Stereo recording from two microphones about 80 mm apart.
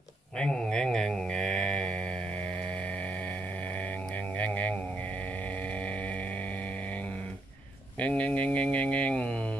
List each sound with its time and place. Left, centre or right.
0.4 s mantra: centre
4.4 s a sound: centre
5.8 s vehicle: centre
8.0 s speech: centre